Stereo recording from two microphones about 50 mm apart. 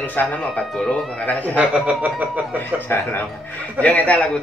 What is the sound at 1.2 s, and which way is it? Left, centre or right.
Speech, left.